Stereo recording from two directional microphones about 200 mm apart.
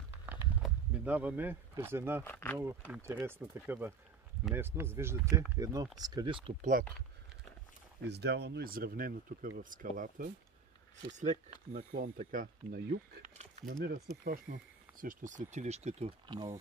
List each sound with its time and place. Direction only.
0.1 s a sound: 10° right (ahead or behind)
2.2 s speech: 10° left (ahead or behind)
2.9 s speech: 10° right (ahead or behind)
8.1 s speech: 55° right (ahead or behind)
13.4 s a sound: 35° right (ahead or behind)
13.8 s speech: 50° right (ahead or behind); by 16.5 s 20° right (ahead or behind)